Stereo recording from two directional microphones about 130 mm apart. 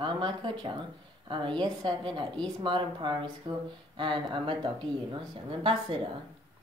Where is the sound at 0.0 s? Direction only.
35° right (ahead or behind).